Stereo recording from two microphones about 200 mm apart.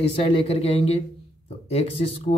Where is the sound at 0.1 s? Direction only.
25° left (ahead or behind).